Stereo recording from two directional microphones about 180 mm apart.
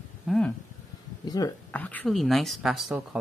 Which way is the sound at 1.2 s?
20° left (ahead or behind).